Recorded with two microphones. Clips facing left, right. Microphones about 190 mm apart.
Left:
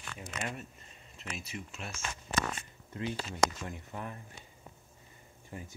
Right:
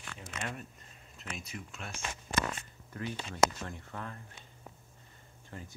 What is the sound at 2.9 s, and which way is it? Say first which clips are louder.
Speech: right 1 dB; 20° left (ahead or behind).